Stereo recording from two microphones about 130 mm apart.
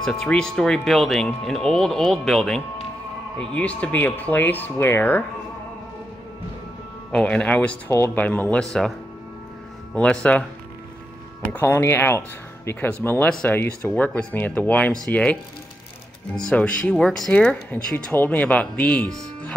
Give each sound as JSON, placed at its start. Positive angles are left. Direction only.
{"t": 0.0, "sound": "speech", "side_deg": 5}
{"t": 7.1, "sound": "speech", "side_deg": 10}
{"t": 9.9, "sound": "speech", "side_deg": 10}
{"t": 11.5, "sound": "speech", "side_deg": 20}
{"t": 16.4, "sound": "speech", "side_deg": 10}